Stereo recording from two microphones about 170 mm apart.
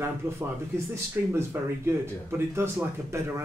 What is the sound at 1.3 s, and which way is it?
Speech, 15° right (ahead or behind).